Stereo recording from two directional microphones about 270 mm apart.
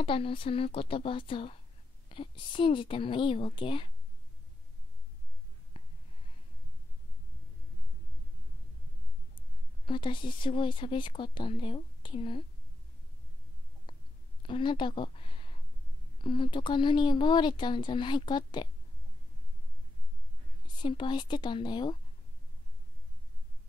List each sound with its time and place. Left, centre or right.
0.0 s a woman's voice: centre
5.7 s a sound: centre
9.8 s speech: centre
14.4 s speech: centre
20.6 s speech: centre